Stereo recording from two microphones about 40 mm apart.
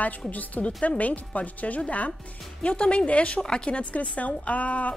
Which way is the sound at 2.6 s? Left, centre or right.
Left.